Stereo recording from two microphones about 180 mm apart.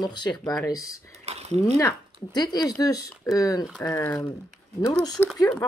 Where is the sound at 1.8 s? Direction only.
20° left (ahead or behind); by 5.4 s 5° left (ahead or behind).